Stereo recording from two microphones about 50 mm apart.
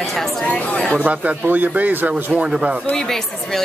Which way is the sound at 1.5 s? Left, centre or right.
Right.